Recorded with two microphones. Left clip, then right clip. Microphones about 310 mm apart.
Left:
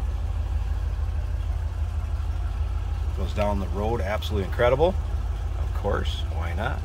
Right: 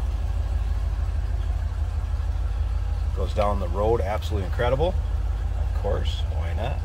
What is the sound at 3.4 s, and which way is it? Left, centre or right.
Speech, centre.